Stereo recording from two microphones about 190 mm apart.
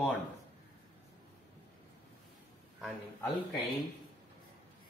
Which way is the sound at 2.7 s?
Centre (ahead or behind).